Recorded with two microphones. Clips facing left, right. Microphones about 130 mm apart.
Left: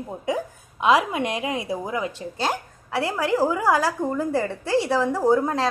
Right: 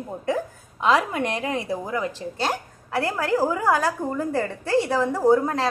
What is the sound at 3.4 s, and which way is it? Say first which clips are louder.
A woman's voice: left 1 dB; 5° left (ahead or behind).